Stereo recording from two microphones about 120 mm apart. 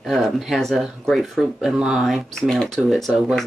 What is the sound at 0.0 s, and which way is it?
Speech, centre (ahead or behind).